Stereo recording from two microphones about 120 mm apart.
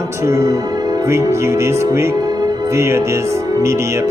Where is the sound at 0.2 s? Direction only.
25° right (ahead or behind).